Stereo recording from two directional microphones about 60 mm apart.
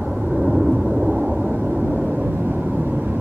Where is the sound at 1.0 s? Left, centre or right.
Right.